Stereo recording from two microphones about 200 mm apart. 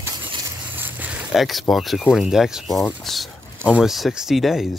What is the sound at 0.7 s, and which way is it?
Speech, 10° right (ahead or behind).